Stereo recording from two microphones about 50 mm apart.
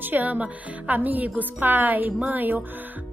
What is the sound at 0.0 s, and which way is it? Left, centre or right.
A woman's voice, right.